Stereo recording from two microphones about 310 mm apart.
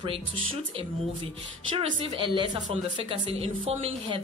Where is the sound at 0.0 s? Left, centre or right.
Centre.